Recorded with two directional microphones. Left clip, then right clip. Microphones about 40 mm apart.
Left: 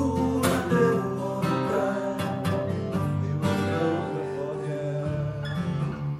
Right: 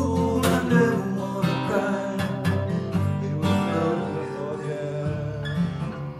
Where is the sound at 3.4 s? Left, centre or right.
Right.